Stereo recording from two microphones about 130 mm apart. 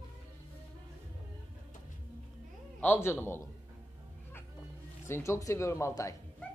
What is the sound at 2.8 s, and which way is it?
Speech, 15° left (ahead or behind).